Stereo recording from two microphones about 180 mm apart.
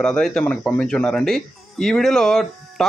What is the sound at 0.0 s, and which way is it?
Speech, 5° left (ahead or behind).